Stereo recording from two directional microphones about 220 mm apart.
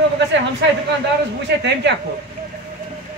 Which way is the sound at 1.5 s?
50° right (ahead or behind).